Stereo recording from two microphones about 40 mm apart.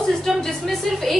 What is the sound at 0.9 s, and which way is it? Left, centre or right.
Speech, centre.